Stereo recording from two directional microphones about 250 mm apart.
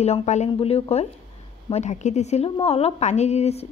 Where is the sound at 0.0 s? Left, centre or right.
Left.